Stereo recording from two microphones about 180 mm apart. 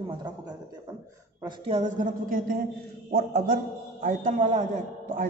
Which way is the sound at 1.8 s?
45° right (ahead or behind).